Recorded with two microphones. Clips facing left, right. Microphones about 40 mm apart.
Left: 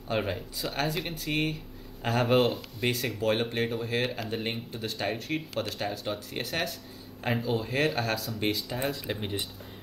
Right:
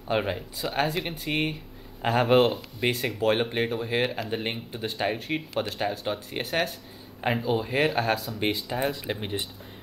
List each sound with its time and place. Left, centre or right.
0.1 s speech: centre